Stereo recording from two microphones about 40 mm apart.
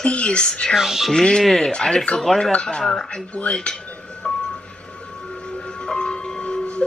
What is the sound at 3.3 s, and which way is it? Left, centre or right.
Speech, left.